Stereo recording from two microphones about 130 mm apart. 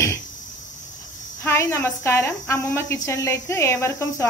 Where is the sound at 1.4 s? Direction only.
20° left (ahead or behind).